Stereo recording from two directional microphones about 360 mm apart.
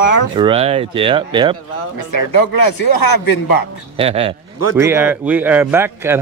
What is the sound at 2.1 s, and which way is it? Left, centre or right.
Speech, left.